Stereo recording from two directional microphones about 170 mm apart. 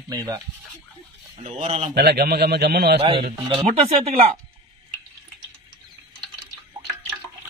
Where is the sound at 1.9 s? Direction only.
65° right (ahead or behind).